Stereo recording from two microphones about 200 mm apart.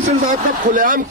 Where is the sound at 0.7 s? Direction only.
45° right (ahead or behind).